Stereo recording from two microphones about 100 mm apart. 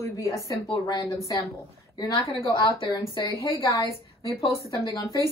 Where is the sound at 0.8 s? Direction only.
40° left (ahead or behind).